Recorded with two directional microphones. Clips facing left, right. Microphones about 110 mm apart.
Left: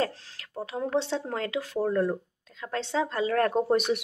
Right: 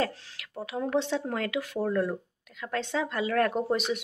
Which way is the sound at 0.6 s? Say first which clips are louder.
Even; 25° left (ahead or behind).